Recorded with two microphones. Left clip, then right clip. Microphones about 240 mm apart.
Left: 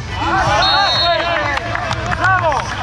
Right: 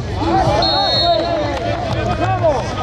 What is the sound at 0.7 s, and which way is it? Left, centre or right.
Music, left.